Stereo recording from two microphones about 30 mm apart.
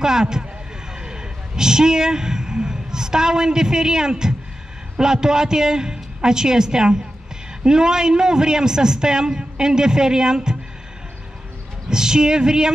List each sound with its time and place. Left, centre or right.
0.0 s a man's voice: right
11.9 s a man's voice: right